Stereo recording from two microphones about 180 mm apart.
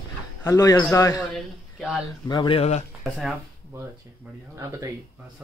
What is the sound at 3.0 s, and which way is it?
Speech, centre (ahead or behind).